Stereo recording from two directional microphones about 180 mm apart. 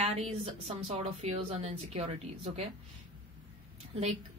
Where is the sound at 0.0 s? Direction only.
35° right (ahead or behind).